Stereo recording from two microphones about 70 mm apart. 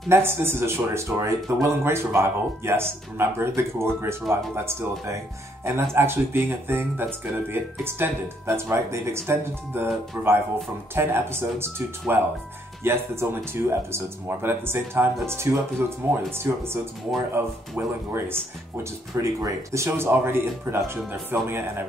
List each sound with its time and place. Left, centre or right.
0.1 s speech: right
19.4 s speech: right